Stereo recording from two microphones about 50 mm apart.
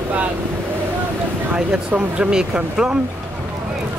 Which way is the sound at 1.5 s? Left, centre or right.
Right.